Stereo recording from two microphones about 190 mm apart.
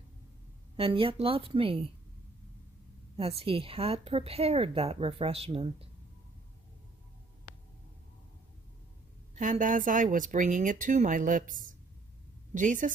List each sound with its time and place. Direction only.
0.7 s speech: 30° right (ahead or behind)
3.2 s speech: 30° right (ahead or behind)
9.3 s speech: 40° right (ahead or behind)